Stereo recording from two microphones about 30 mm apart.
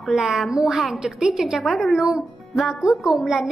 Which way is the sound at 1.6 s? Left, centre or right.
Centre.